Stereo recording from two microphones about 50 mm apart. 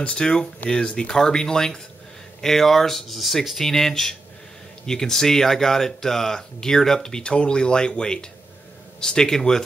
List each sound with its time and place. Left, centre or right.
0.0 s speech: centre